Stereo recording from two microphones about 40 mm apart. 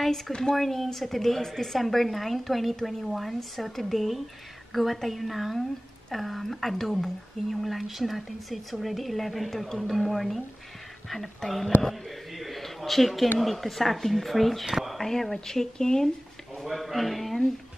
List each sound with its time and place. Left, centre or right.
0.3 s speech: centre
0.6 s a woman's voice: centre
11.9 s a sound: centre
13.4 s a woman's voice: centre
14.7 s whispering: centre
15.0 s speech: centre
16.6 s a woman's voice: centre